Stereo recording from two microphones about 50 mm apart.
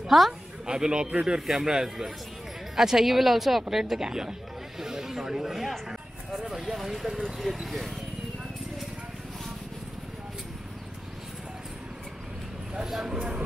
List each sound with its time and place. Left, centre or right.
0.0 s a woman's voice: centre
0.7 s a woman's voice: centre
12.7 s speech: centre